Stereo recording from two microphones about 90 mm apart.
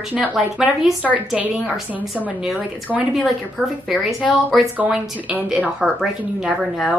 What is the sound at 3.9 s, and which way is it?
Speech, centre (ahead or behind).